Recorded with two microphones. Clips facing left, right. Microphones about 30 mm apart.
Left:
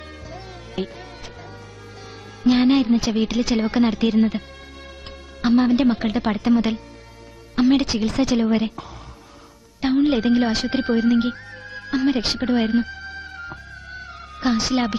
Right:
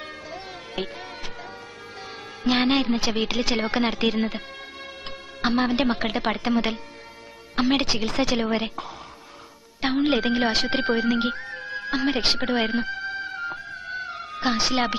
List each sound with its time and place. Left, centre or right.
0.3 s music: centre
2.4 s a woman's voice: centre
5.4 s a woman's voice: centre